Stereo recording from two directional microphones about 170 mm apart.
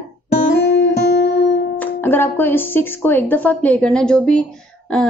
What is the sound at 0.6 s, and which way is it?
Music, 80° left.